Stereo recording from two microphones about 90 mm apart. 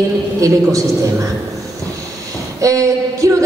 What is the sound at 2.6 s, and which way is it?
Speech, 40° right (ahead or behind).